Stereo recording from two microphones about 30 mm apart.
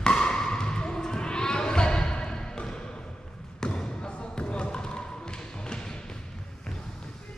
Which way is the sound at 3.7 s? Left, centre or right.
Left.